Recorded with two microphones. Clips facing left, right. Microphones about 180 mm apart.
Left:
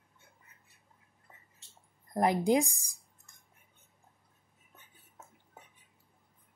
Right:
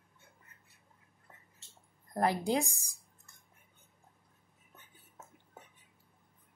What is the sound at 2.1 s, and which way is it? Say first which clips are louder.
Speech: left 4 dB; 15° left (ahead or behind).